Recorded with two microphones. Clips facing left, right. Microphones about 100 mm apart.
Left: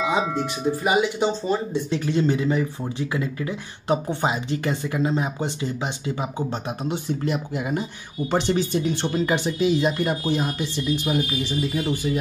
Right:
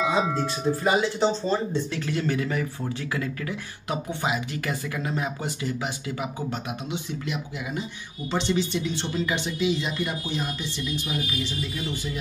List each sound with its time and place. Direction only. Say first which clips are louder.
0.3 s speech: left 1 dB; 15° left (ahead or behind)
3.9 s speech: left 5 dB; 30° left (ahead or behind)
6.8 s speech: left 6 dB; 40° left (ahead or behind)